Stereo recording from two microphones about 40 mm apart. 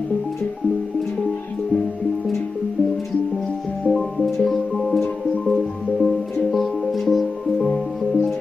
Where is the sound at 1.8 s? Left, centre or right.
Centre.